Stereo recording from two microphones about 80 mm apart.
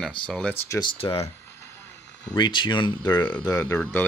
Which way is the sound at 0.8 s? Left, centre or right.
Left.